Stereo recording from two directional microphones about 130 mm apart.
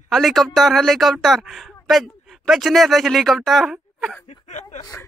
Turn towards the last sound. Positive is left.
turn(degrees=65)  # may be behind; listen again after turning